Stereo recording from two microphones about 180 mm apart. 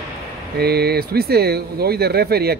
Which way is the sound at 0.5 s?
60° right (ahead or behind).